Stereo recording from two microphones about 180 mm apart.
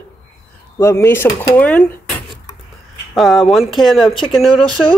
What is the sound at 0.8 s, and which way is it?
Speech, 15° left (ahead or behind).